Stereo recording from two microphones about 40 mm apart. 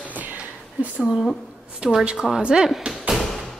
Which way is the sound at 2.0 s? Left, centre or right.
Right.